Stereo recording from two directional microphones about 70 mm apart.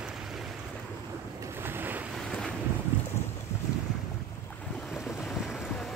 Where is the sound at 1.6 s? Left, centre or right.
Right.